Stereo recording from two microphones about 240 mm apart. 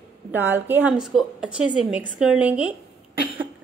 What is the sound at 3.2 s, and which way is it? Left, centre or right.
Cough, right.